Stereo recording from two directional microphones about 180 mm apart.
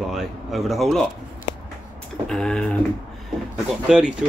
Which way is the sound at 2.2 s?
5° left (ahead or behind).